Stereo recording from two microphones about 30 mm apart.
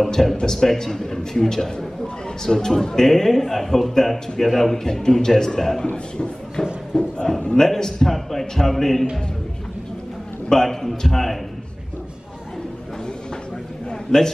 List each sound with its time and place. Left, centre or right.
0.1 s a man's voice: centre
4.7 s a man's voice: centre
6.9 s a man's voice: left
7.5 s a man's voice: centre
10.5 s a man's voice: centre
14.1 s a man's voice: centre